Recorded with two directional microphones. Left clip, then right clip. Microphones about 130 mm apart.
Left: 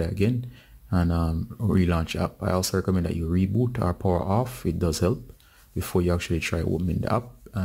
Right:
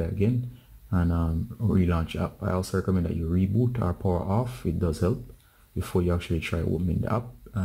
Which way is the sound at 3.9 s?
35° left (ahead or behind).